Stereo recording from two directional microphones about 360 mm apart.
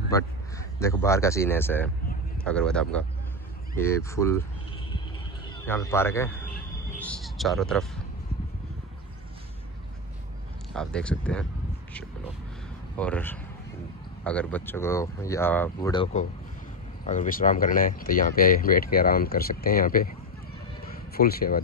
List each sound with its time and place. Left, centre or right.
0.1 s speech: centre
5.7 s a man's voice: centre
10.7 s speech: centre
12.9 s speech: centre; by 20.1 s left
21.1 s speech: left